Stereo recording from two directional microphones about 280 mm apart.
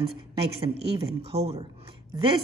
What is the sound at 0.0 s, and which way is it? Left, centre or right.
A woman's voice, centre.